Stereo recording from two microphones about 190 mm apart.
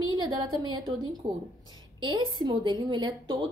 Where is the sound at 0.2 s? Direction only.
25° right (ahead or behind).